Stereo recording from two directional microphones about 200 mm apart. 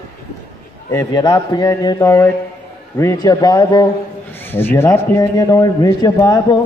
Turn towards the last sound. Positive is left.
turn(degrees=20)  # may be behind; listen again after turning